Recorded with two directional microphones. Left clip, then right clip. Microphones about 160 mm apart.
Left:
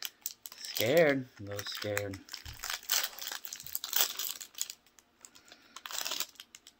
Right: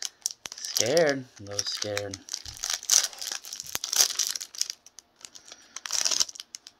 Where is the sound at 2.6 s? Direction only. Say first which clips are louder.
Right 9 dB; 30° right (ahead or behind).